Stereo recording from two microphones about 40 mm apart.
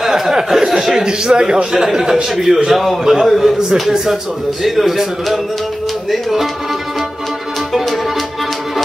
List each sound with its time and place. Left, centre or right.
0.0 s a sound: centre
0.5 s a man's voice: centre
0.9 s speech: centre
1.7 s a man's voice: centre
7.7 s music: centre